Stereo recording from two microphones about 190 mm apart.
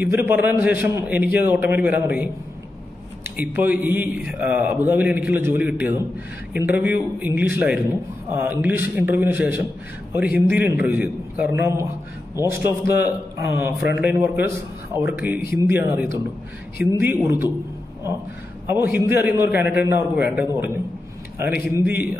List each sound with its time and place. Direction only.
0.0 s a man's voice: 10° right (ahead or behind)
3.3 s a man's voice: 10° right (ahead or behind)
12.8 s a man's voice: 55° left (ahead or behind)
13.9 s a man's voice: 10° right (ahead or behind)
18.7 s a man's voice: 10° right (ahead or behind)